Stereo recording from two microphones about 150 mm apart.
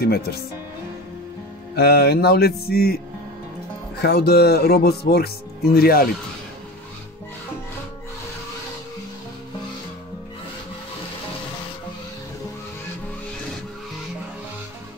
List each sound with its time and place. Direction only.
0.0 s speech: 90° left
1.8 s speech: 90° left
4.0 s speech: 90° left